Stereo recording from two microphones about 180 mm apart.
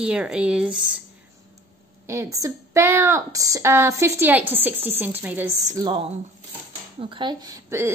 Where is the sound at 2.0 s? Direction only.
15° right (ahead or behind).